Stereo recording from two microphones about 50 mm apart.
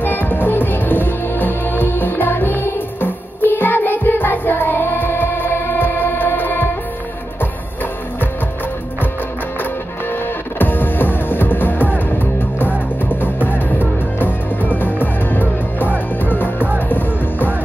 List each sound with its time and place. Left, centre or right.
0.0 s music: left
10.6 s music: left